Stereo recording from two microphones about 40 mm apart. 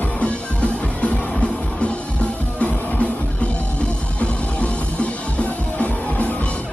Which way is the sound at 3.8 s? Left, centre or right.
Left.